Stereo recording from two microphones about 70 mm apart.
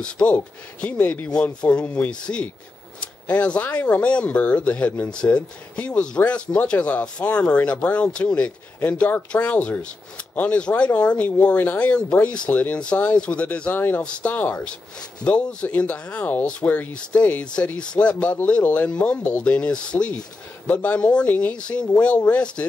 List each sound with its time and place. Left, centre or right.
0.0 s speech: centre
14.0 s speech: centre